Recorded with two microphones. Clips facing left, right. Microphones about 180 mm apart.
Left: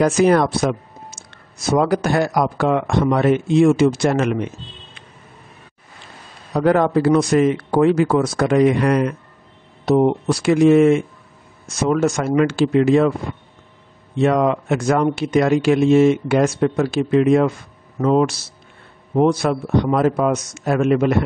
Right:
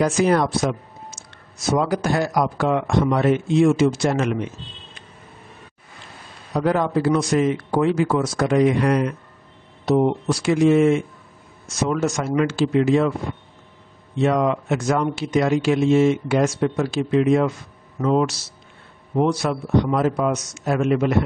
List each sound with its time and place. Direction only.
0.0 s speech: 65° left (ahead or behind)
6.5 s speech: 60° left (ahead or behind)
14.2 s speech: 55° left (ahead or behind)